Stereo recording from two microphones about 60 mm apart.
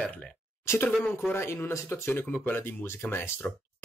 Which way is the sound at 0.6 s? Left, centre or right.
Left.